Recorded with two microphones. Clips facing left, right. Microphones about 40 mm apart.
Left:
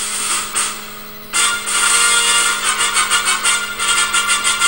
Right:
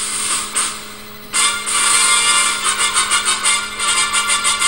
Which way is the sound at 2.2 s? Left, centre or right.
Left.